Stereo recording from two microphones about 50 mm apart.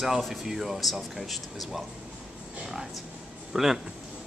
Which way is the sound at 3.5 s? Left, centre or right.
Centre.